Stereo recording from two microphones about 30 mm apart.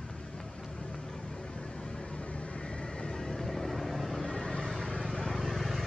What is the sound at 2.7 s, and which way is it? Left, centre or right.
Vehicle, left.